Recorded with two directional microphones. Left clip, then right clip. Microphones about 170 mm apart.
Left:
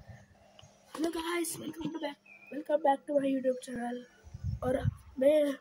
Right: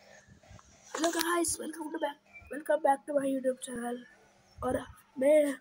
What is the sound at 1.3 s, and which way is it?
Child singing, 30° right (ahead or behind).